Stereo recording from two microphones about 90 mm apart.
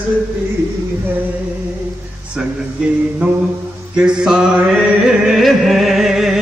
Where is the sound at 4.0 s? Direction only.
10° right (ahead or behind).